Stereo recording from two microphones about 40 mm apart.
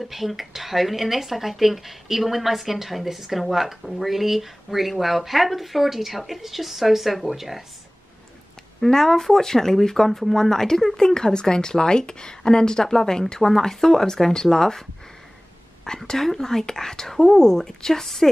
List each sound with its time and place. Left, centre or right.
0.0 s speech: centre
8.8 s speech: centre